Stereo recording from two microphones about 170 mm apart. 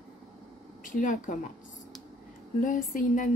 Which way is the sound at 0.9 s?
50° left (ahead or behind).